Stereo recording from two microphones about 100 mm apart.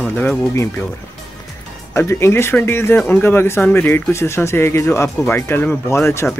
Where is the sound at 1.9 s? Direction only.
25° left (ahead or behind).